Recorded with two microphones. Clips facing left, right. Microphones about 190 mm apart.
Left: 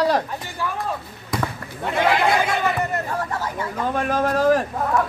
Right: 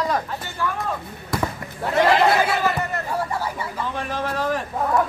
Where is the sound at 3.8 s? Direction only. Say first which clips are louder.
Left 6 dB; 45° left (ahead or behind).